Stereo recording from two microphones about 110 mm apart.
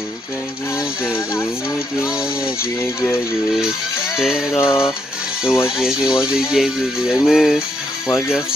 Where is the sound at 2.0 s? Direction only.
5° right (ahead or behind).